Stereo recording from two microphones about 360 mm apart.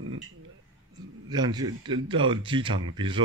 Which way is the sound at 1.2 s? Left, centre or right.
Centre.